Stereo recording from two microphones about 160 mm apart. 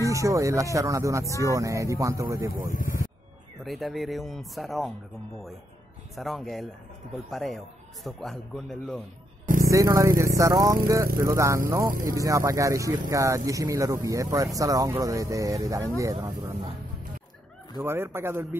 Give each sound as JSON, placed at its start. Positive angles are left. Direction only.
{"t": 0.0, "sound": "speech", "side_deg": -20}
{"t": 2.7, "sound": "speech", "side_deg": 60}
{"t": 3.6, "sound": "speech", "side_deg": 0}
{"t": 6.1, "sound": "speech", "side_deg": 0}
{"t": 9.7, "sound": "speech", "side_deg": -20}
{"t": 17.7, "sound": "speech", "side_deg": -15}